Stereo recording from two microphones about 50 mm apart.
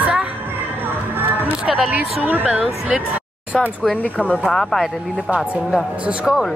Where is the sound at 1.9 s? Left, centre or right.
Right.